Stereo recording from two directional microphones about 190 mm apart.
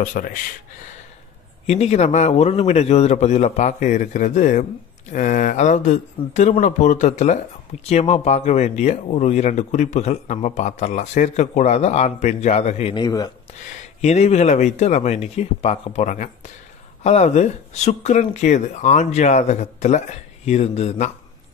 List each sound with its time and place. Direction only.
0.0 s speech: 45° left (ahead or behind)
1.7 s speech: 35° left (ahead or behind)
12.9 s speech: 20° left (ahead or behind)
14.0 s speech: 35° left (ahead or behind)